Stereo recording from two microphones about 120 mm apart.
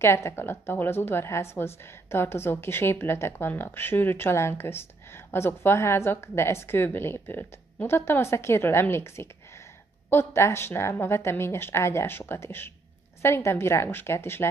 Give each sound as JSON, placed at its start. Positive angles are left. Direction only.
{"t": 0.0, "sound": "a woman's voice", "side_deg": 20}